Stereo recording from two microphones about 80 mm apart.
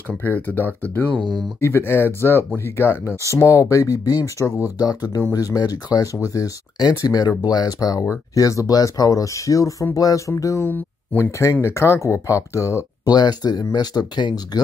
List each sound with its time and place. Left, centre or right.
0.2 s speech: left
5.6 s speech: left
6.2 s speech: left
13.0 s speech: left